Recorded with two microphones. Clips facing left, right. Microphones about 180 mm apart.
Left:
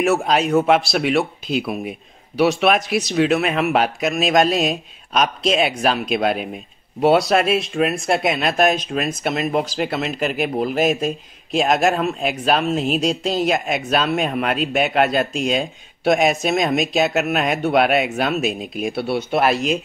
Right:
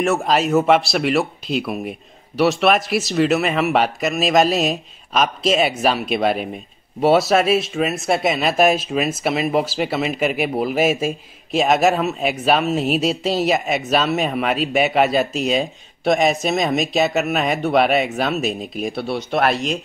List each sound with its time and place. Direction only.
0.0 s speech: centre (ahead or behind)